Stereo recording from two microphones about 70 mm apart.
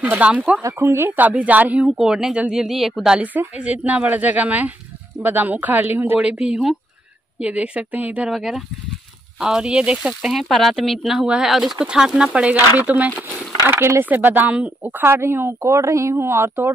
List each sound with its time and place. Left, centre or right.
0.2 s speech: right
0.6 s speech: right
1.9 s speech: centre
3.2 s speech: centre
6.2 s speech: centre
8.3 s speech: centre
10.3 s speech: centre; by 13.1 s right
13.7 s speech: right
14.0 s speech: right
14.9 s speech: right